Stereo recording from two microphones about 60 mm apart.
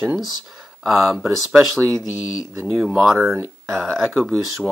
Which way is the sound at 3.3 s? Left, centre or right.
Right.